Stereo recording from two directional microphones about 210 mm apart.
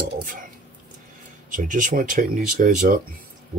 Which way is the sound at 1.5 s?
40° right (ahead or behind).